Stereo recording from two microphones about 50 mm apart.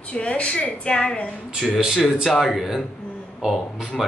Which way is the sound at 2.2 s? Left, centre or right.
Centre.